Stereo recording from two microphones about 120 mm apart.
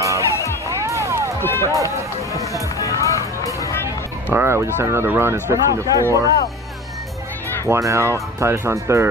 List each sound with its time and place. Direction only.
0.0 s music: 25° right (ahead or behind)
0.3 s music: 25° left (ahead or behind)
0.7 s music: 25° right (ahead or behind)
1.4 s run: 20° left (ahead or behind)
1.7 s speech: 25° right (ahead or behind)
2.8 s music: 25° left (ahead or behind)
4.3 s speech: 20° right (ahead or behind)
7.6 s speech: 25° right (ahead or behind)